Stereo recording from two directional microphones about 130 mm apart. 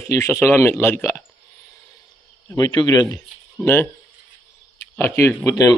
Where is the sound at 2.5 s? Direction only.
30° left (ahead or behind).